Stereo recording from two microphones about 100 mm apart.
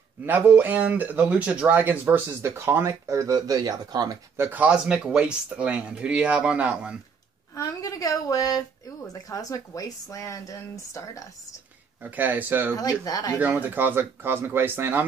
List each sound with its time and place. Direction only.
0.2 s speech: 20° right (ahead or behind); by 4.2 s 40° right (ahead or behind)
4.4 s speech: 15° right (ahead or behind)
7.5 s a woman's voice: 30° left (ahead or behind)
12.0 s speech: 20° right (ahead or behind)
12.7 s a woman's voice: 35° left (ahead or behind)
13.4 s speech: 20° right (ahead or behind)